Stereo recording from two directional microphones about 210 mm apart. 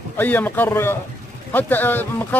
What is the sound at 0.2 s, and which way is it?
Speech, 10° left (ahead or behind).